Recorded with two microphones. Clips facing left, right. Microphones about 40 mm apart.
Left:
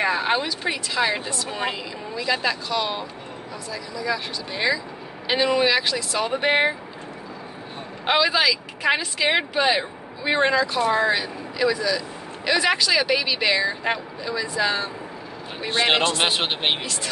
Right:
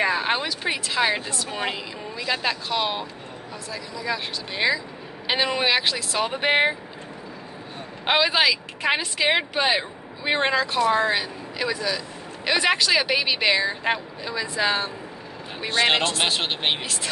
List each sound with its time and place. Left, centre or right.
0.0 s speech: centre
8.2 s speech: centre
15.8 s speech: centre